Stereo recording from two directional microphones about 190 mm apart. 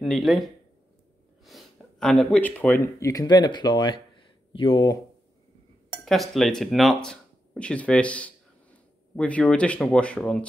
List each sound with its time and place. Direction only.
0.0 s speech: centre (ahead or behind); by 4.9 s 25° left (ahead or behind)
6.3 s speech: centre (ahead or behind)